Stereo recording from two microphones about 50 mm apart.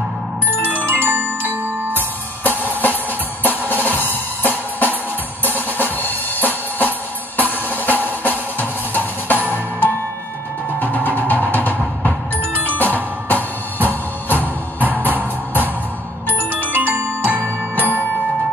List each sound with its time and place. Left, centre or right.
0.8 s glockenspiel: right
2.0 s music: left
5.4 s drum: left
7.3 s music: left
16.6 s music: right